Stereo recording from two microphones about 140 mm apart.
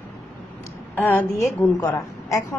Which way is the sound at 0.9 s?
10° left (ahead or behind).